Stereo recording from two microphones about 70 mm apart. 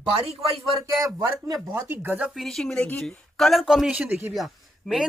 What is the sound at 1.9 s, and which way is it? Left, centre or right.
Speech, right.